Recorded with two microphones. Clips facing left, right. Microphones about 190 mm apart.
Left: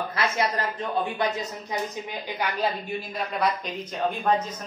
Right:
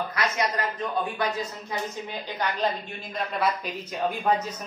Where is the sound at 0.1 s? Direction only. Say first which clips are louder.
Left 1 dB; 30° left (ahead or behind).